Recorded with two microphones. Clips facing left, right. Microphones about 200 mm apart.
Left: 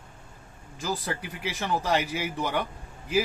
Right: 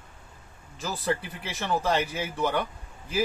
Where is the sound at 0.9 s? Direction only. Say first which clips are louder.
Right 4 dB; 15° left (ahead or behind).